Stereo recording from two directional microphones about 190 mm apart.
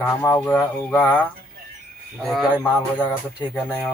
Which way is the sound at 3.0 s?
25° left (ahead or behind).